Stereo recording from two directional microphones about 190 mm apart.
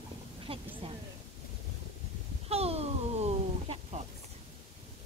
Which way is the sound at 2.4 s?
30° right (ahead or behind).